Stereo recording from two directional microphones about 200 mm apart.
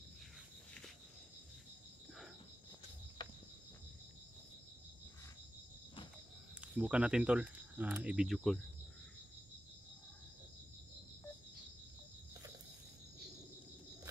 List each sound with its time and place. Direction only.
3.2 s cricket: 25° left (ahead or behind)
6.6 s speech: 5° right (ahead or behind)